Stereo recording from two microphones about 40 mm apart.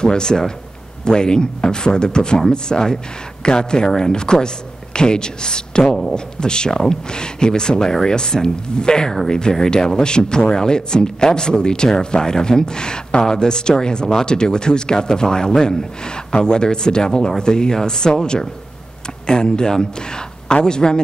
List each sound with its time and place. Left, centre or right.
0.0 s speech: centre